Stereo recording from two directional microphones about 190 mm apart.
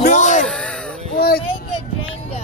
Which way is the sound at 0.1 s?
40° left (ahead or behind).